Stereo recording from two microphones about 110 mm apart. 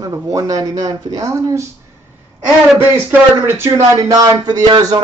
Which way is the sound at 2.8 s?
20° right (ahead or behind).